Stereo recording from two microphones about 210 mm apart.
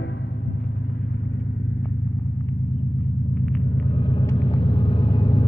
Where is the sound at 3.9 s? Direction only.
25° left (ahead or behind).